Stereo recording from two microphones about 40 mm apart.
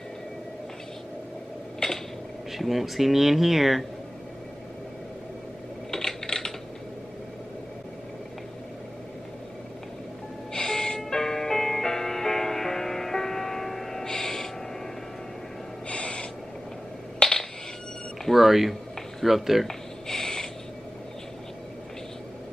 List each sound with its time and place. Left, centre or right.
1.8 s a sound: left
2.5 s speech: centre
5.9 s typing: centre
10.5 s music: centre
15.9 s owl: left
17.2 s coin: centre
18.2 s a sound: centre
19.2 s speech: centre
19.7 s a sound: centre